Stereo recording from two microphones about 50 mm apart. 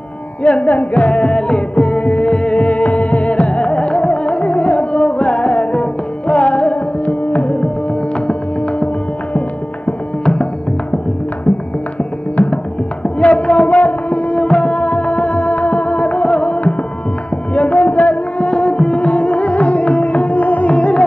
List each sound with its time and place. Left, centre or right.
0.4 s music: left
9.8 s music: left
12.4 s music: left